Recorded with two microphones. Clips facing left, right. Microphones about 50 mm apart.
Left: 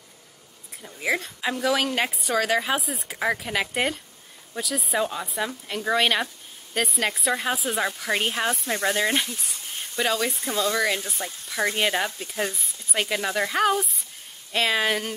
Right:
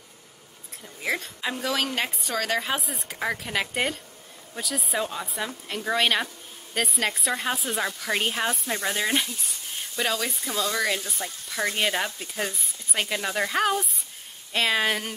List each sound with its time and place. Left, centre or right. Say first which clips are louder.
1.0 s speech: left 3 dB; centre
10.4 s speech: left 2 dB; left
11.7 s speech: left 2 dB; centre